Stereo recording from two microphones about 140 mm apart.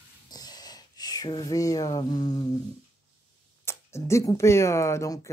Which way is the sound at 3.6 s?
20° left (ahead or behind).